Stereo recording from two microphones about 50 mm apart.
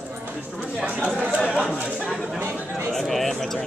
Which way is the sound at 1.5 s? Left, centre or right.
Centre.